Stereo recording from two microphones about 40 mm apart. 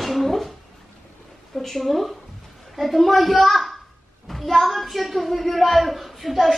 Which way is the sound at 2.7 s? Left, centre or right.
Centre.